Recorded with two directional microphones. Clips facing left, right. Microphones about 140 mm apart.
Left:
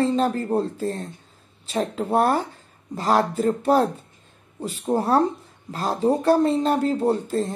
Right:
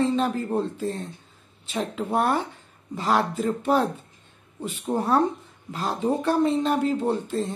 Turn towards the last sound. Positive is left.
turn(degrees=40)  # may be behind; listen again after turning